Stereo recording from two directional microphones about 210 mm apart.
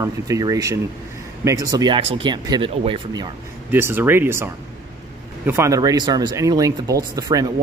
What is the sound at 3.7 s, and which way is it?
Speech, 10° right (ahead or behind).